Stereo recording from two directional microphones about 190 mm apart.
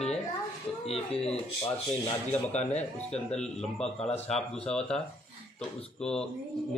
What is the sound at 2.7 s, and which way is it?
Speech, 5° left (ahead or behind).